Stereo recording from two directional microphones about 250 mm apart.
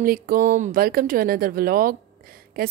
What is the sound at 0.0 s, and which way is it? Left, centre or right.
A woman's voice, right.